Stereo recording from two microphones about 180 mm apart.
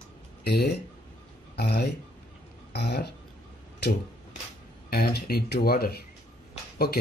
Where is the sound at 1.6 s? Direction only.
60° left (ahead or behind).